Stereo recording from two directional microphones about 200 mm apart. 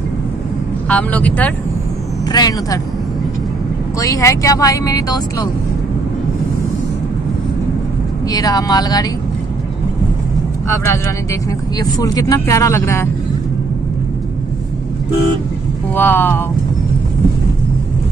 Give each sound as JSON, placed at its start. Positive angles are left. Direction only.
{"t": 0.8, "sound": "speech", "side_deg": 5}
{"t": 2.3, "sound": "speech", "side_deg": 20}
{"t": 4.0, "sound": "speech", "side_deg": 15}
{"t": 8.3, "sound": "speech", "side_deg": 20}
{"t": 11.8, "sound": "speech", "side_deg": 20}
{"t": 15.9, "sound": "speech", "side_deg": 10}